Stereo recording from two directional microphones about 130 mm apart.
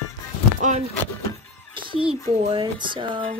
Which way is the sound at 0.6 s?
70° right (ahead or behind).